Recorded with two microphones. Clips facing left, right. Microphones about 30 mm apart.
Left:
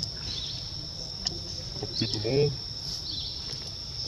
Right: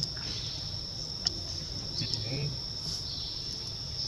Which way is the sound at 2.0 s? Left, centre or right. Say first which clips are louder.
Left 5 dB; left.